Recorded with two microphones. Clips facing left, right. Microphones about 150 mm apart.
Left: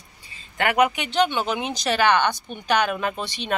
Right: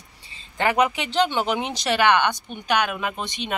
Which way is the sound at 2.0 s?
20° right (ahead or behind).